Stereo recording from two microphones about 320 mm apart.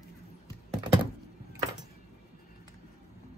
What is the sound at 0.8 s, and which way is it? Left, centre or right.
Thunk, centre.